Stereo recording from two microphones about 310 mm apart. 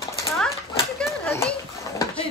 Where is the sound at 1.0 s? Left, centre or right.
Centre.